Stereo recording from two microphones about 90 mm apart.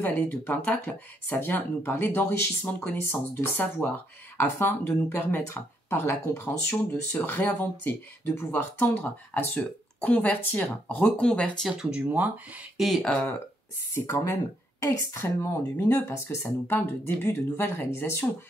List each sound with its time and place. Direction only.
0.0 s speech: 20° left (ahead or behind)
11.6 s speech: 10° right (ahead or behind)
12.7 s speech: centre (ahead or behind)
13.0 s speech: 10° left (ahead or behind)
13.9 s speech: 30° left (ahead or behind)